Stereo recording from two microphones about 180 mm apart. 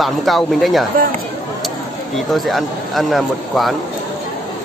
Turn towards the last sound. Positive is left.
turn(degrees=0)  # may be behind; listen again after turning